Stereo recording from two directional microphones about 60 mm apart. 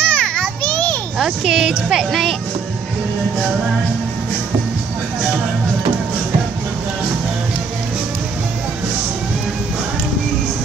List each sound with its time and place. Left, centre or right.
0.0 s children playing: centre
1.1 s a woman's voice: centre